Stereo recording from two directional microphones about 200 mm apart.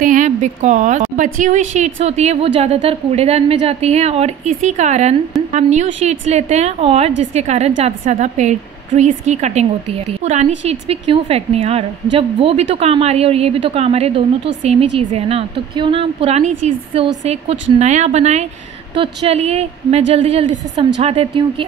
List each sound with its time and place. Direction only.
0.0 s a woman's voice: 40° right (ahead or behind)